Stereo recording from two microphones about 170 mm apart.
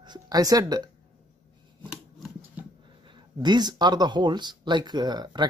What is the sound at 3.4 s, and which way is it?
Speech, 25° right (ahead or behind).